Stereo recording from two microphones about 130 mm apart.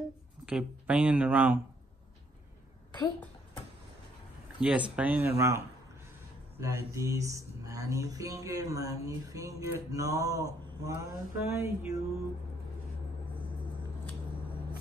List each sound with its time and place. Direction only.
0.5 s speech: 10° right (ahead or behind)
4.6 s speech: 10° right (ahead or behind)
6.6 s speech: 25° right (ahead or behind)